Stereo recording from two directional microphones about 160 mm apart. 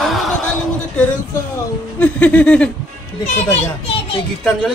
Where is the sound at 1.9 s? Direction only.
10° left (ahead or behind).